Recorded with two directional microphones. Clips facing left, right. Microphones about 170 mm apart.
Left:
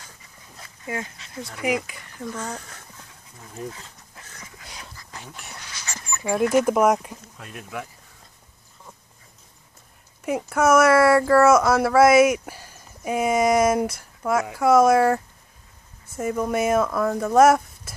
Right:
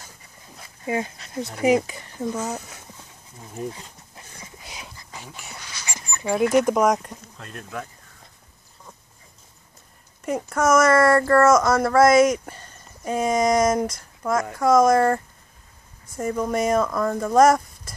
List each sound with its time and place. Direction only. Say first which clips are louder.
1.0 s speech: right 2 dB; 45° right (ahead or behind)
1.5 s speech: right 6 dB; 30° right (ahead or behind)
2.3 s speech: right 4 dB; 10° right (ahead or behind)
3.3 s speech: right 3 dB; 20° right (ahead or behind)
4.2 s a sound: right 1 dB; 15° right (ahead or behind)
5.1 s speech: even; centre (ahead or behind)
5.9 s dog: right 1 dB; 10° right (ahead or behind)
6.2 s speech: right 1 dB; centre (ahead or behind)
10.2 s speech: left 1 dB; 5° left (ahead or behind)